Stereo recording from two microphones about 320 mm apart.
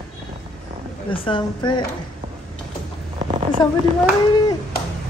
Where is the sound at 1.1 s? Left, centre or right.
Centre.